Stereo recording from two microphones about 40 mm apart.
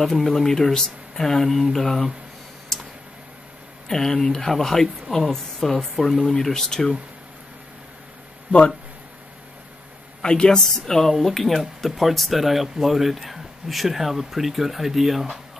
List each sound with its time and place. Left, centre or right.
0.0 s speech: centre
3.9 s speech: centre
8.5 s speech: left
10.2 s a woman's voice: left
10.6 s speech: centre